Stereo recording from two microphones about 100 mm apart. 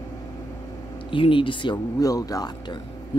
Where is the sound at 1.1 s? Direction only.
60° left (ahead or behind).